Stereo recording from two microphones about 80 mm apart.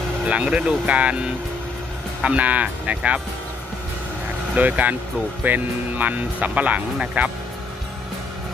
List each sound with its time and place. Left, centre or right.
0.2 s speech: centre
4.6 s speech: centre